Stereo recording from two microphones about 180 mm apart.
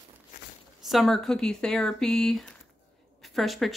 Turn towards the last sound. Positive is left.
turn(degrees=0)  # may be behind; listen again after turning